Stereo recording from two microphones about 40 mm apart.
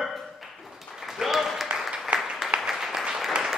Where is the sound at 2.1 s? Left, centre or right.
Right.